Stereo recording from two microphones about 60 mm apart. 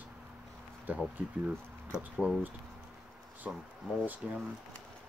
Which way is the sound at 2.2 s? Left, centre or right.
Right.